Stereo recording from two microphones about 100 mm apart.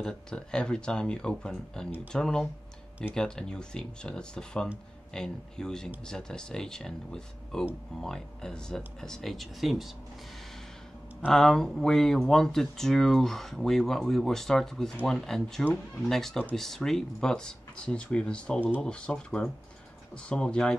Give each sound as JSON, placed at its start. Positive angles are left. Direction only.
{"t": 0.0, "sound": "speech", "side_deg": 10}
{"t": 11.1, "sound": "speech", "side_deg": 5}